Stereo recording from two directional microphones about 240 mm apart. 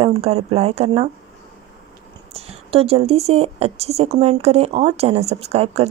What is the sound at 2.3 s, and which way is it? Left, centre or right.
Speech, right.